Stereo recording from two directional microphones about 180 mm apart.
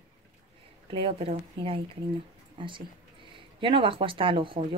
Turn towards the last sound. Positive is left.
turn(degrees=-30)  # may be behind; listen again after turning